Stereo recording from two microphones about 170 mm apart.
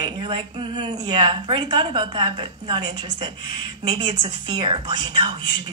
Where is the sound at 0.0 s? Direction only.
30° right (ahead or behind).